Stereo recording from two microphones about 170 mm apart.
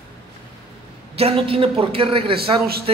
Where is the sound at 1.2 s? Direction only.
35° right (ahead or behind).